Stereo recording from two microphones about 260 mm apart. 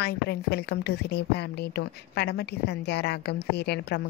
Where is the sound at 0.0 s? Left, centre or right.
Left.